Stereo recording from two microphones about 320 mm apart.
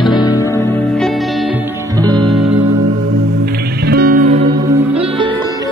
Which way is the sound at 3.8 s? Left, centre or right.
Right.